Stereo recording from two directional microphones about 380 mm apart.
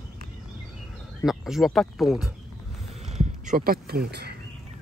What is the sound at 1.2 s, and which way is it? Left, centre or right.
Speech, centre.